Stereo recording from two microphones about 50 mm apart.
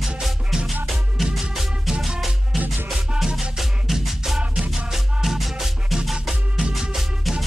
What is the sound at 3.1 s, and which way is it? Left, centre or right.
Music, centre.